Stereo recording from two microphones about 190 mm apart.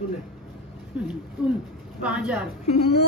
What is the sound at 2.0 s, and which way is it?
Speech, 5° right (ahead or behind).